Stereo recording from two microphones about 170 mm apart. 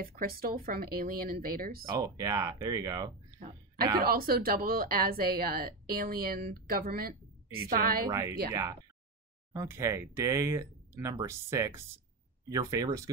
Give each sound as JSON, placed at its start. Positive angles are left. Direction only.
{"t": 0.0, "sound": "speech", "side_deg": -60}
{"t": 2.0, "sound": "speech", "side_deg": -20}
{"t": 4.0, "sound": "speech", "side_deg": -60}
{"t": 8.1, "sound": "speech", "side_deg": -20}